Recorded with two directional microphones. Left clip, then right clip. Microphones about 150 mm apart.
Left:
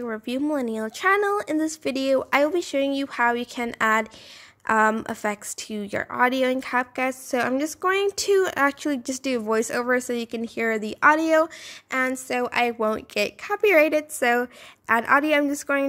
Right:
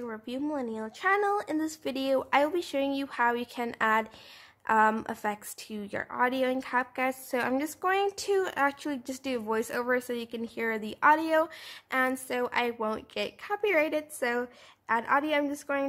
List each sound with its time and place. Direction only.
0.0 s speech: 35° left (ahead or behind)